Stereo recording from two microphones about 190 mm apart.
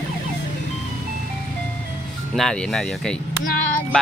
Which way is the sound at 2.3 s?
5° left (ahead or behind).